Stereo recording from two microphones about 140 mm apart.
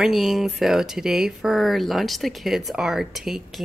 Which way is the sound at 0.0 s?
Centre (ahead or behind).